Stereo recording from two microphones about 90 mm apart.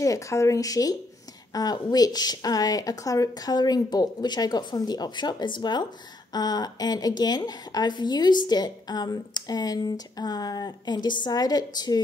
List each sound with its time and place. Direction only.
0.0 s a woman's voice: 35° left (ahead or behind)